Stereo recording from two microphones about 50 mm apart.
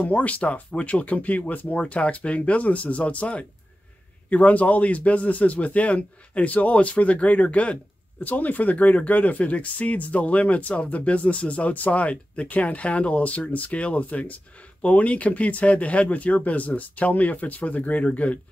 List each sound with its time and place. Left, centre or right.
0.0 s speech: left